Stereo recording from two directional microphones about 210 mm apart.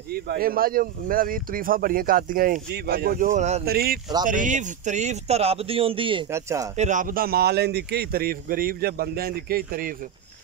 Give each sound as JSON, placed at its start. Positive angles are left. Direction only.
{"t": 0.1, "sound": "speech", "side_deg": -45}
{"t": 3.6, "sound": "speech", "side_deg": -45}
{"t": 6.3, "sound": "speech", "side_deg": -15}
{"t": 6.8, "sound": "speech", "side_deg": -35}